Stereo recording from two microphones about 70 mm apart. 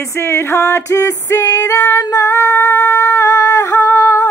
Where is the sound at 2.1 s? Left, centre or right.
Left.